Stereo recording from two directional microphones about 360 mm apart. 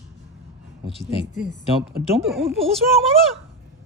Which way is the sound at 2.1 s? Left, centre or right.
Centre.